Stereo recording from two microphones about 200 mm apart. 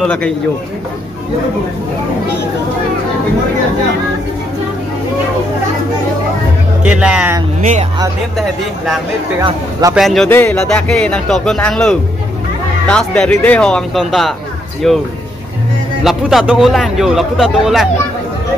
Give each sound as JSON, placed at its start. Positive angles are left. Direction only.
{"t": 0.0, "sound": "music", "side_deg": 5}
{"t": 6.8, "sound": "music", "side_deg": -5}
{"t": 8.4, "sound": "music", "side_deg": 0}
{"t": 9.5, "sound": "speech", "side_deg": -15}
{"t": 9.9, "sound": "music", "side_deg": 0}